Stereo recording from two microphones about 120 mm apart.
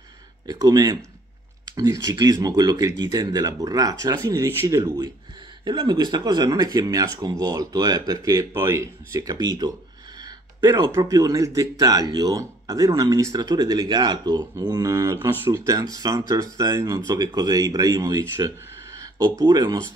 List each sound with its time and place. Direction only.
0.5 s speech: 30° right (ahead or behind)
10.6 s speech: 20° right (ahead or behind)
19.4 s speech: 35° right (ahead or behind)